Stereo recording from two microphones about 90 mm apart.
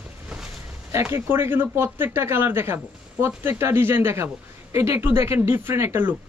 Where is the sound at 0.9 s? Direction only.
30° right (ahead or behind).